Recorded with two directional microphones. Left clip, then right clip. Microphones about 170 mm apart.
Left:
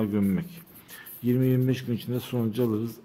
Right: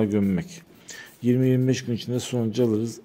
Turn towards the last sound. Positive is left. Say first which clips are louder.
# right 4 dB
turn(degrees=-15)  # may be behind; listen again after turning